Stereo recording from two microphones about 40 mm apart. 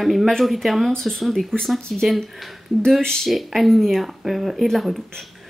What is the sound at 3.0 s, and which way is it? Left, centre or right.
Speech, centre.